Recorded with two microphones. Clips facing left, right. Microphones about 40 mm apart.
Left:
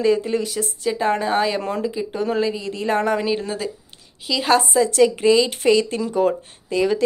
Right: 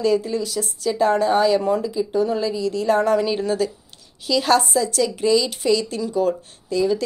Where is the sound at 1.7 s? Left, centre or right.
Left.